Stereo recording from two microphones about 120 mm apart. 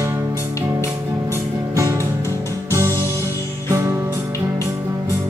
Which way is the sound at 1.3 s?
25° right (ahead or behind).